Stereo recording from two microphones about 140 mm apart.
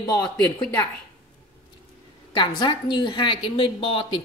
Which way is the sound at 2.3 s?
35° left (ahead or behind).